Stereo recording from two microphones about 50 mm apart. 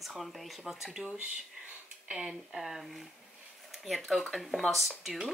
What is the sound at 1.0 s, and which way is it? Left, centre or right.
Speech, right.